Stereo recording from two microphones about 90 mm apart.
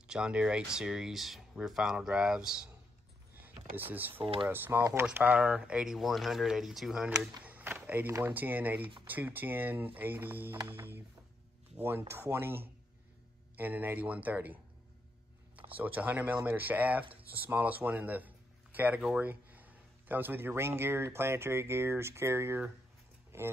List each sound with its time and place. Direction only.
0.0 s speech: 10° right (ahead or behind)
3.4 s speech: 20° right (ahead or behind)
4.2 s speech: 90° right
4.5 s speech: 25° right (ahead or behind); by 7.2 s 5° right (ahead or behind)
7.4 s a sound: 20° right (ahead or behind)
8.1 s speech: 25° right (ahead or behind)
12.1 s speech: 25° right (ahead or behind)
15.7 s a man's voice: 20° right (ahead or behind)